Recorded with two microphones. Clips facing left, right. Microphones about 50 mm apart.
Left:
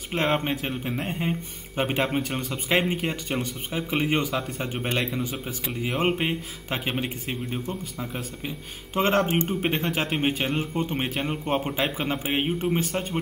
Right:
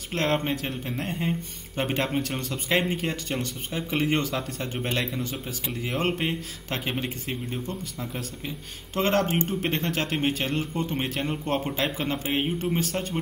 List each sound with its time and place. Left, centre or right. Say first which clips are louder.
0.1 s a man's voice: left 1 dB; centre